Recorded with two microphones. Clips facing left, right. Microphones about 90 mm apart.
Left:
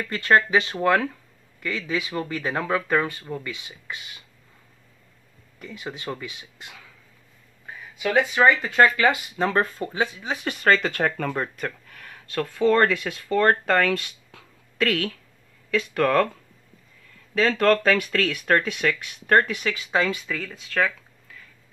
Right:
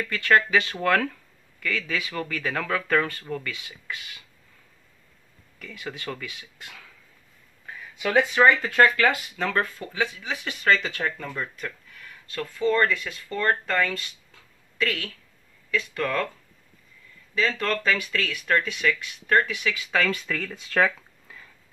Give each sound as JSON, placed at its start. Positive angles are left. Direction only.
{"t": 0.0, "sound": "speech", "side_deg": 25}
{"t": 0.7, "sound": "speech", "side_deg": 15}
{"t": 5.6, "sound": "speech", "side_deg": 25}
{"t": 7.6, "sound": "speech", "side_deg": 10}
{"t": 9.4, "sound": "speech", "side_deg": 30}
{"t": 17.3, "sound": "speech", "side_deg": 55}
{"t": 19.9, "sound": "speech", "side_deg": 25}
{"t": 20.2, "sound": "speech", "side_deg": 5}